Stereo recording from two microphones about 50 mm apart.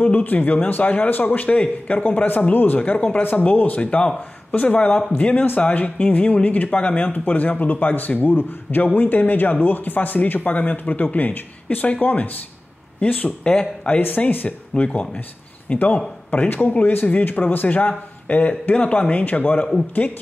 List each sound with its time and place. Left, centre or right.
0.0 s a man's voice: left
14.3 s a man's voice: left
15.7 s speech: left
16.4 s a man's voice: left